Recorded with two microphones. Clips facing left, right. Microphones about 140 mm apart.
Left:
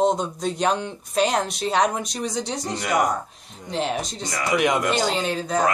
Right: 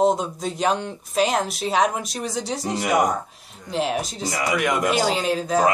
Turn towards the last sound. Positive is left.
turn(degrees=-5)  # may be behind; listen again after turning